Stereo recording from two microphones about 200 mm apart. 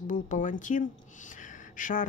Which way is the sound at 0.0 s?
40° left (ahead or behind).